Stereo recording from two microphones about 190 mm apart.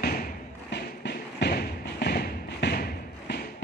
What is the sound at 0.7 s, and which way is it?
Thump, 60° left (ahead or behind).